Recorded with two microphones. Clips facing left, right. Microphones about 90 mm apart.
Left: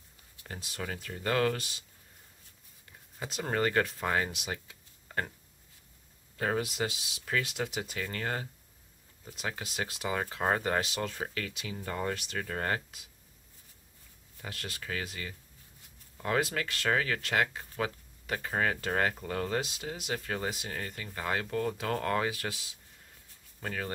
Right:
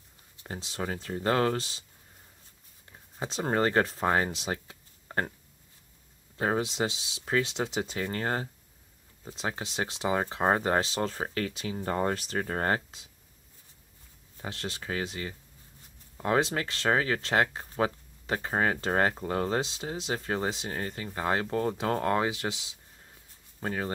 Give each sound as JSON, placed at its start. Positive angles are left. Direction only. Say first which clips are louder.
{"t": 0.4, "sound": "speech", "louder": "right 5 dB", "side_deg": -25}
{"t": 3.2, "sound": "speech", "louder": "right 4 dB", "side_deg": -30}
{"t": 6.3, "sound": "speech", "louder": "right 3 dB", "side_deg": -25}
{"t": 14.3, "sound": "speech", "louder": "right 5 dB", "side_deg": -25}